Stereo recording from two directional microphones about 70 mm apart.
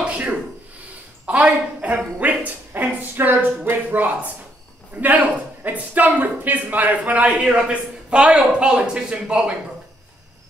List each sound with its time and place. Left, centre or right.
0.1 s rub: centre
1.2 s a woman's voice: centre